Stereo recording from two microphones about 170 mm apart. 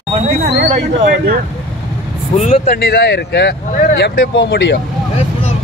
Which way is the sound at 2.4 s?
35° left (ahead or behind).